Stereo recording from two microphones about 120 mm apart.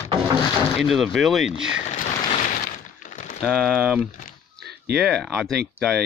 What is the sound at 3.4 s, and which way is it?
Speech, 5° left (ahead or behind).